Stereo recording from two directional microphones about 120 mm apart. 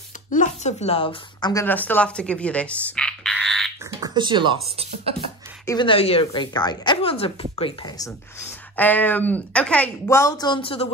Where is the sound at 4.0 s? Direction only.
40° right (ahead or behind).